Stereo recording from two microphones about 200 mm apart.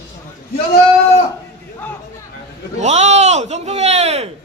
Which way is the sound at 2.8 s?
35° right (ahead or behind).